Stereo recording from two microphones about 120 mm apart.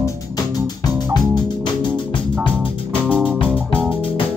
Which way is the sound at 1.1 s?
40° left (ahead or behind).